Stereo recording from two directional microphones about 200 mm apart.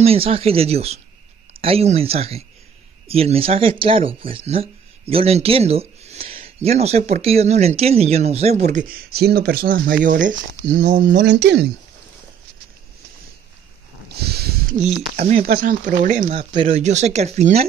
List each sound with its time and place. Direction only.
0.0 s speech: 30° right (ahead or behind)
10.7 s speech: 55° right (ahead or behind)
14.0 s a sound: 55° right (ahead or behind)
15.4 s speech: 45° right (ahead or behind)
16.3 s speech: 30° right (ahead or behind)